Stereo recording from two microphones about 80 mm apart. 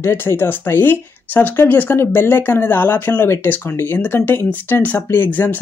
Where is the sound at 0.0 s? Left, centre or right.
Left.